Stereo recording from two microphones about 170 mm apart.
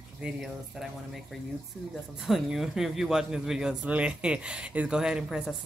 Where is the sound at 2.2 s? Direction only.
Centre (ahead or behind).